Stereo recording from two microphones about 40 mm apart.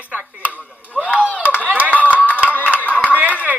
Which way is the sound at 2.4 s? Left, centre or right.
Left.